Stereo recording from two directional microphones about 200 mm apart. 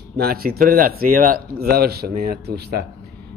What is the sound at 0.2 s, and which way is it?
Speech, 50° right (ahead or behind).